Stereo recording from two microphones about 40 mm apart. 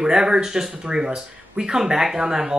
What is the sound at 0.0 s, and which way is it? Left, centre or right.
Speech, centre.